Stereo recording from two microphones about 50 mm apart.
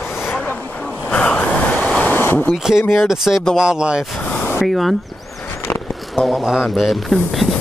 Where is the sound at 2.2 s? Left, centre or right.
Left.